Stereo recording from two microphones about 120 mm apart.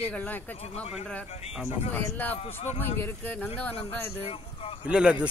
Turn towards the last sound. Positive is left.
turn(degrees=-10)  # may be behind; listen again after turning